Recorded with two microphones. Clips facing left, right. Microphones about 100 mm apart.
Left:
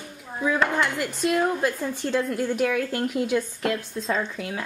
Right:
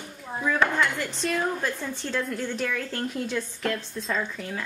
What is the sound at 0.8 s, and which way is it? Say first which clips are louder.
A woman's voice: left 2 dB; 5° left (ahead or behind).